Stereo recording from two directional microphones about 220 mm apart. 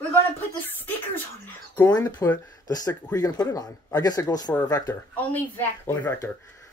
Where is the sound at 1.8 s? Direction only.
15° left (ahead or behind).